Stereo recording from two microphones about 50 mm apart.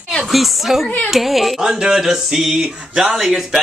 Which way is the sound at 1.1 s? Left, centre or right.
Centre.